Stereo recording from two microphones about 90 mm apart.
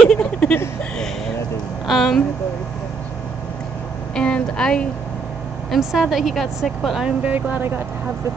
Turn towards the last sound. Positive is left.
turn(degrees=-20)  # may be behind; listen again after turning